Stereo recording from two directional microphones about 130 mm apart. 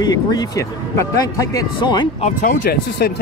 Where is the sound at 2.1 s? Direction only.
80° left.